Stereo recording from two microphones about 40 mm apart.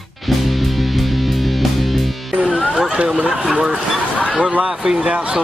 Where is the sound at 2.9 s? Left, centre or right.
Right.